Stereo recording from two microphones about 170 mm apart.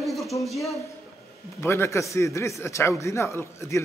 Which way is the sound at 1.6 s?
15° left (ahead or behind).